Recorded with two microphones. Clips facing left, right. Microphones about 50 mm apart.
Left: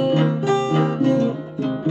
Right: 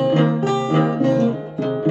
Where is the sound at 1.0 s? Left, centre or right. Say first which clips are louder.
Right 1 dB; right.